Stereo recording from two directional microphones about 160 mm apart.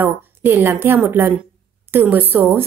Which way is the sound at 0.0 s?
15° right (ahead or behind).